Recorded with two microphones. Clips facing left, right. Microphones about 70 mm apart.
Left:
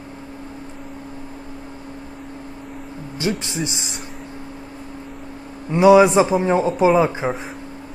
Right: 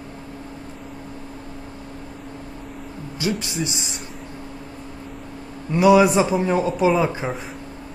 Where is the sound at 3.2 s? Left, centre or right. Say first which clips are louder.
Left 1 dB; left.